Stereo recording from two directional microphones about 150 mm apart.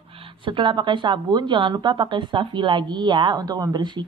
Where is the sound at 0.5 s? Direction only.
30° right (ahead or behind).